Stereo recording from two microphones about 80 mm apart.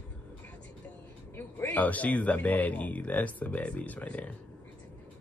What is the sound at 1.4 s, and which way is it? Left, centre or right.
Speech, left.